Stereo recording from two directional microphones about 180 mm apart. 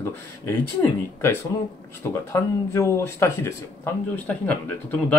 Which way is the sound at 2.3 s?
15° left (ahead or behind).